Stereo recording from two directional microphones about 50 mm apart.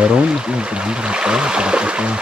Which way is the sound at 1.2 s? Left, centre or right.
Centre.